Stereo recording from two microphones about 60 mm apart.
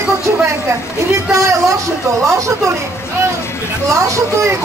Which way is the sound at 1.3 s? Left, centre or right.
Right.